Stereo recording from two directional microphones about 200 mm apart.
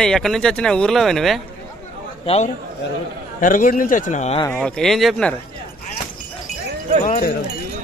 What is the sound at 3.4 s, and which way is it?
Speech, 40° left (ahead or behind).